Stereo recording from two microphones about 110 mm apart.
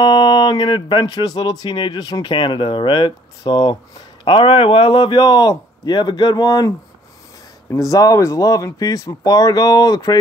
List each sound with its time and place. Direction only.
0.0 s a man's voice: 45° left (ahead or behind)
7.9 s a man's voice: 30° left (ahead or behind)